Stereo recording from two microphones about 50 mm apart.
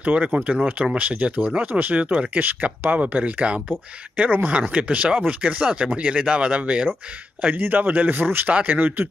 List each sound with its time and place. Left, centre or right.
0.0 s speech: right
2.4 s speech: right
4.2 s speech: right
4.7 s speech: right
7.6 s speech: right
8.5 s speech: right
8.8 s speech: right